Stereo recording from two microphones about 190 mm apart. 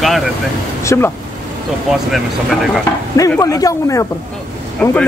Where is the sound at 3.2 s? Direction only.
20° left (ahead or behind).